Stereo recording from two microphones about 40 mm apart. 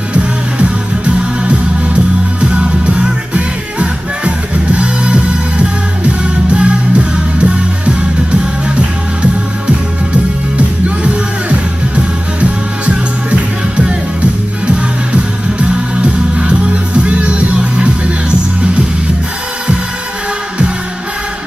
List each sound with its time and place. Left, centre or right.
0.1 s music: right
11.4 s music: right
16.3 s music: right